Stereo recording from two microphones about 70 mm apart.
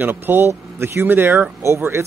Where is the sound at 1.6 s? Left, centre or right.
Right.